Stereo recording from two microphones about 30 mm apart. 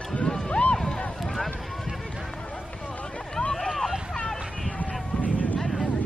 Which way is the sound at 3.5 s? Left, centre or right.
Centre.